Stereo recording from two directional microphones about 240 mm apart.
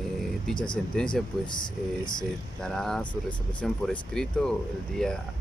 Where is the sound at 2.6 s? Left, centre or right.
Centre.